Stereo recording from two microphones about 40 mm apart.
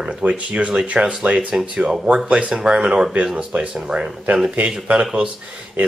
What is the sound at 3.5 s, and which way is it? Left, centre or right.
Speech, right.